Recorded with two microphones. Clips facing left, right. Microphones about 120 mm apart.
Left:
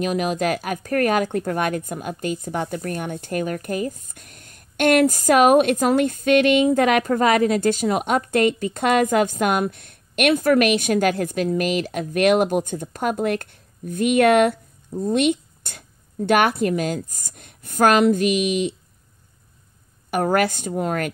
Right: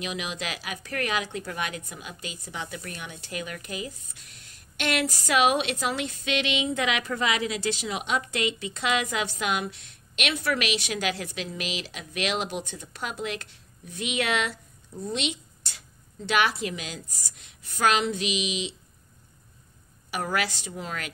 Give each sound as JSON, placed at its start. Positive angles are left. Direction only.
{"t": 0.0, "sound": "speech", "side_deg": 45}
{"t": 20.1, "sound": "speech", "side_deg": 50}